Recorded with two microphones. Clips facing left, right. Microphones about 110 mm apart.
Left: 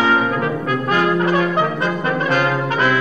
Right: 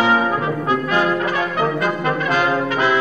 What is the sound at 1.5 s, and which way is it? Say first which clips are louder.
Brass instrument: even; 30° left (ahead or behind).